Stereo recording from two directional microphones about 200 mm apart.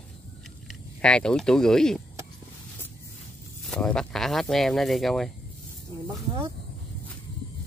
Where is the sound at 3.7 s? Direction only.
5° left (ahead or behind).